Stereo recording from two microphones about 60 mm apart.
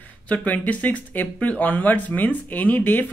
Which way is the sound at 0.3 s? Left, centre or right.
Left.